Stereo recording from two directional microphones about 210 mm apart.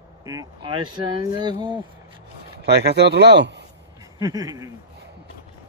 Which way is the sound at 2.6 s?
50° right (ahead or behind).